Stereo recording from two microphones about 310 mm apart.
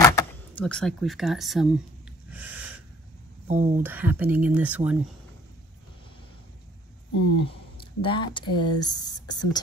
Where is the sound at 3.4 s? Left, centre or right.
Right.